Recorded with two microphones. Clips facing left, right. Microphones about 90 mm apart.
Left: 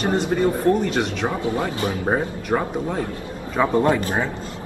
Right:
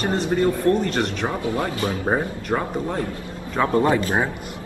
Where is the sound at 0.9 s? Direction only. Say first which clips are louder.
Left 1 dB; 5° left (ahead or behind).